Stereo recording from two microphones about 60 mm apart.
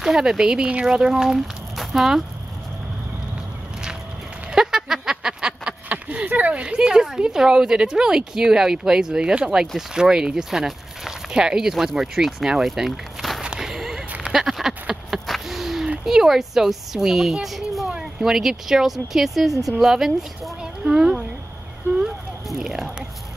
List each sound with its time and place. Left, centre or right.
0.0 s speech: centre
4.5 s speech: centre
13.4 s whip: centre
14.3 s a sound: centre
16.1 s a child's voice: centre
22.6 s a sound: centre